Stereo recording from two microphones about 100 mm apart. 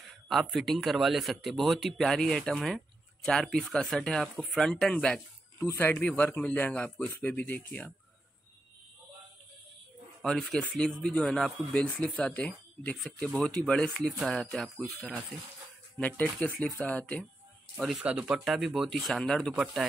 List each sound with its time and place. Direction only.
0.3 s speech: centre (ahead or behind); by 7.9 s 15° left (ahead or behind)
10.2 s speech: 5° left (ahead or behind)
17.7 s speech: 5° right (ahead or behind)